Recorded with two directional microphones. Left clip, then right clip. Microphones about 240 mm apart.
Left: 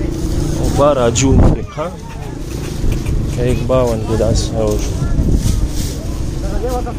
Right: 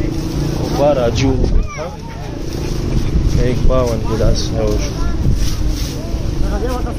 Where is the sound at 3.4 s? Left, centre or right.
Centre.